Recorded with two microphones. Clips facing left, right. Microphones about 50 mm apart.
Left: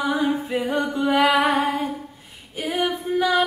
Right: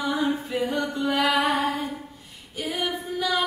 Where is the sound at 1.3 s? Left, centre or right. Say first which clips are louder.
Left 4 dB; left.